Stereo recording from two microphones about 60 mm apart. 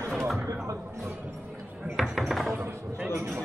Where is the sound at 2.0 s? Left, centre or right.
Centre.